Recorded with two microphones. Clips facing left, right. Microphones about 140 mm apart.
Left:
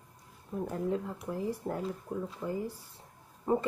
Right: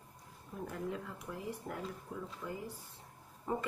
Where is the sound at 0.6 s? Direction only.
30° left (ahead or behind).